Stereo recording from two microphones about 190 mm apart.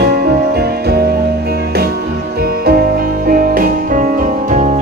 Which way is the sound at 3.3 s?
50° right (ahead or behind).